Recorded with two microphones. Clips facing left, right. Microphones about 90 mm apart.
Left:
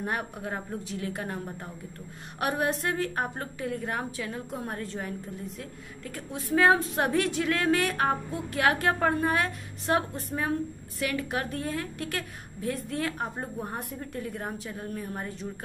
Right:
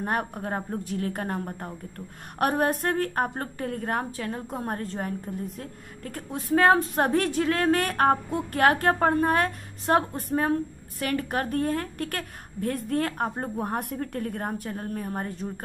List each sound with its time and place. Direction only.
0.0 s a woman's voice: 40° right (ahead or behind)